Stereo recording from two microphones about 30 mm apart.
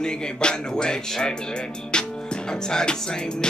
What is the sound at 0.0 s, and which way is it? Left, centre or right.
Music, left.